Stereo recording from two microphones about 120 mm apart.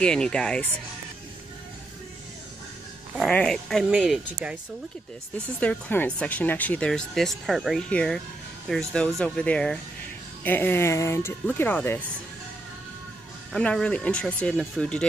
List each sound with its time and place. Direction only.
0.0 s speech: 5° left (ahead or behind)
3.3 s speech: 5° left (ahead or behind)
5.6 s speech: 15° left (ahead or behind)
6.9 s speech: 5° left (ahead or behind)
13.5 s speech: 5° left (ahead or behind)